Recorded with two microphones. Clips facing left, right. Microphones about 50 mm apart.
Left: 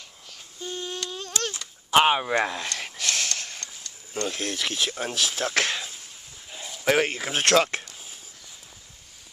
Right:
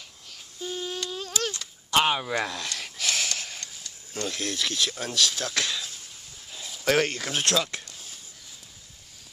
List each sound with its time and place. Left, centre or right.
0.3 s babbling: centre
1.9 s speech: left
3.0 s a sound: centre
4.1 s speech: centre
5.5 s speech: left
6.6 s speech: centre
7.3 s speech: left
7.8 s a sound: centre